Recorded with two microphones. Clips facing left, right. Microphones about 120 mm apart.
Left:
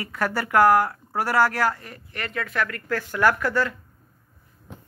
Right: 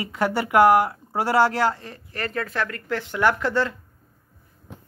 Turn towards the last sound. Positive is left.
turn(degrees=-25)  # may be behind; listen again after turning